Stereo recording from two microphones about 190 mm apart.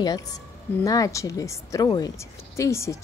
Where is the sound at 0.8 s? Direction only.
20° left (ahead or behind).